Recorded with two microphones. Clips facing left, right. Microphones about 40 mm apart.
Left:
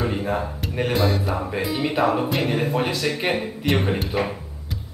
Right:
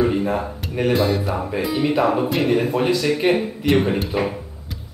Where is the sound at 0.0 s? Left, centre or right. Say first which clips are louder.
Right 4 dB; centre.